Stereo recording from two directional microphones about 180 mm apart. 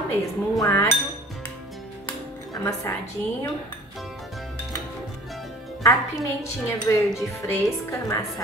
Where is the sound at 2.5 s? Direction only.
20° left (ahead or behind).